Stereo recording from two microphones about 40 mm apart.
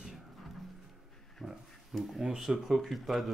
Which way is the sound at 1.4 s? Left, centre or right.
Centre.